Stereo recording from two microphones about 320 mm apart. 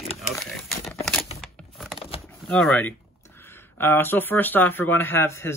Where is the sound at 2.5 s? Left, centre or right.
Centre.